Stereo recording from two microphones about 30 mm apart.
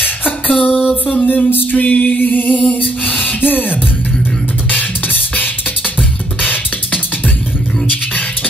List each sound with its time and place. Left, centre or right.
0.5 s a sound: left
1.0 s music: left
6.4 s music: left